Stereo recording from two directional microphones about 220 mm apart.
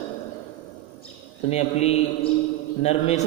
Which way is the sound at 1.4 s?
30° left (ahead or behind).